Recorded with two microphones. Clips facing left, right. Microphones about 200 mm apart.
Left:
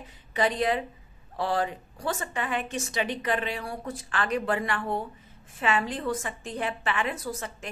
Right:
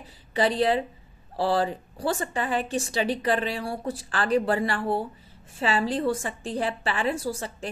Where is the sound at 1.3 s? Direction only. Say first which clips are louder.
Right 4 dB; 30° right (ahead or behind).